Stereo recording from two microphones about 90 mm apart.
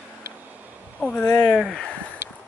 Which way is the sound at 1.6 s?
Centre (ahead or behind).